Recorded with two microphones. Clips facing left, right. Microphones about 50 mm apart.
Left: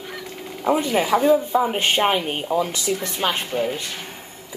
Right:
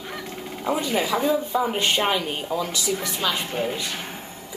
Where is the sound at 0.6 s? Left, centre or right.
Centre.